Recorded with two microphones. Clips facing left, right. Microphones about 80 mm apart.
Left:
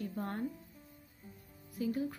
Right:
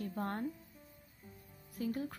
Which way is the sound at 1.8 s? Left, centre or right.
Right.